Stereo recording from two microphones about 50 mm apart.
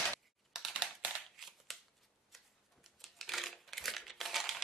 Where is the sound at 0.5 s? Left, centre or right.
Centre.